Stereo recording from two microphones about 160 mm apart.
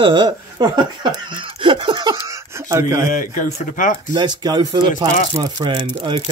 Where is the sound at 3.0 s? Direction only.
55° left (ahead or behind).